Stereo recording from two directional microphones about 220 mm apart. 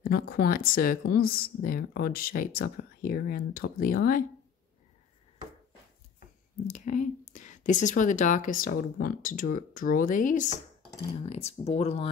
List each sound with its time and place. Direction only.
0.0 s speech: 45° left (ahead or behind)
6.7 s speech: 35° left (ahead or behind)